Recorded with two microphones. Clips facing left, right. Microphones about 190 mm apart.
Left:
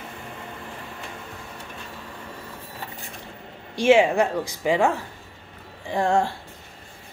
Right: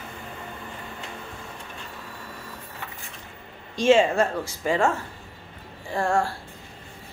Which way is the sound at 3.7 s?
10° left (ahead or behind).